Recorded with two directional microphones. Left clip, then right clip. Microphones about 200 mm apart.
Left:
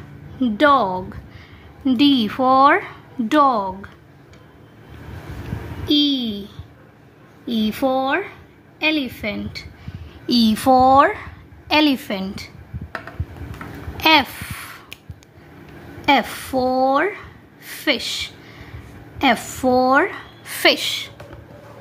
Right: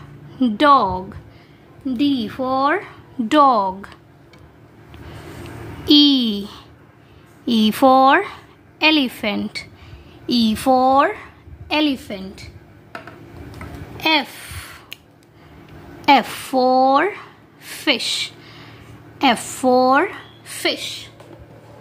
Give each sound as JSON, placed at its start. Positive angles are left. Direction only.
{"t": 0.4, "sound": "a woman's voice", "side_deg": -10}
{"t": 1.9, "sound": "speech", "side_deg": 15}
{"t": 3.3, "sound": "a woman's voice", "side_deg": -15}
{"t": 5.9, "sound": "a child's voice", "side_deg": -35}
{"t": 10.2, "sound": "a woman's voice", "side_deg": -5}
{"t": 12.0, "sound": "speech", "side_deg": 15}
{"t": 13.9, "sound": "a sound", "side_deg": 5}
{"t": 16.0, "sound": "a sound", "side_deg": -15}
{"t": 19.1, "sound": "a woman's voice", "side_deg": -10}
{"t": 20.6, "sound": "a woman's voice", "side_deg": 25}